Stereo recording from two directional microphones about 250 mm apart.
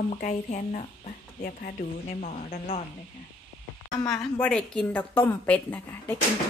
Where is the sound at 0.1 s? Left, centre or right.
Left.